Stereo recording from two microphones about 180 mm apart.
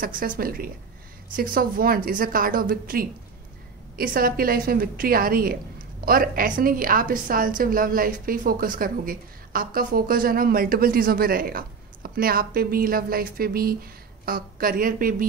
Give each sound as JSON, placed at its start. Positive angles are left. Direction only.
{"t": 0.0, "sound": "a woman's voice", "side_deg": -50}